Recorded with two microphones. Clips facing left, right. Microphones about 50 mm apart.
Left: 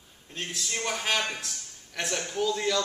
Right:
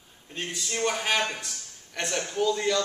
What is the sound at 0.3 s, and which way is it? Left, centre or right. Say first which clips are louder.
A man's voice: right 1 dB; centre.